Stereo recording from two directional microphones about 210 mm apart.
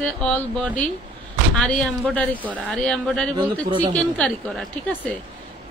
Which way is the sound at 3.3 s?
25° right (ahead or behind).